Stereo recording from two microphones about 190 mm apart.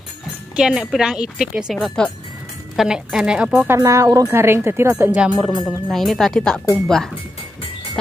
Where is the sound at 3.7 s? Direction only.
15° right (ahead or behind).